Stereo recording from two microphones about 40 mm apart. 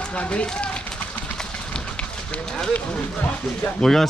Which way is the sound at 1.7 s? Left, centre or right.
Left.